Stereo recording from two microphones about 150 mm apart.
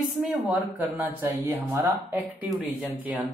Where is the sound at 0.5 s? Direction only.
10° right (ahead or behind).